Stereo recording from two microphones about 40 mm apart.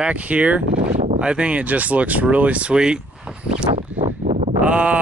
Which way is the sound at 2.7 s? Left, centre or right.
Centre.